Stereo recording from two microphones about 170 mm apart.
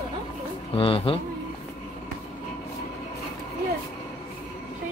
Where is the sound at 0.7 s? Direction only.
35° left (ahead or behind).